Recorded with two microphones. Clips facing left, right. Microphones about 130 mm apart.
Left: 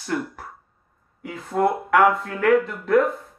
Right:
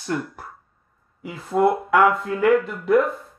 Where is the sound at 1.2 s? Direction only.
15° right (ahead or behind).